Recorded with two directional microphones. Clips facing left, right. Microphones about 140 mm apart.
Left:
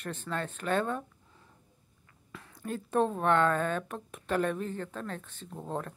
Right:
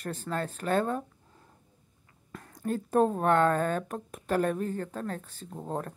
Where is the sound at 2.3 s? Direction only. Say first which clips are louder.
Right 5 dB; 45° right (ahead or behind).